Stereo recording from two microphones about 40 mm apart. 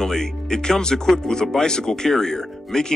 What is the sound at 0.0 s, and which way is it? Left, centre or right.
Speech, centre.